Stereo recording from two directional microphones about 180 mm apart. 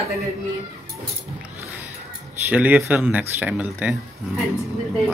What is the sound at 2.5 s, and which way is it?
Speech, 10° right (ahead or behind).